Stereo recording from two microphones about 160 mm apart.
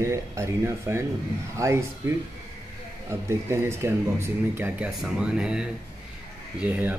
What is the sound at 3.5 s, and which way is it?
A man's voice, 15° right (ahead or behind).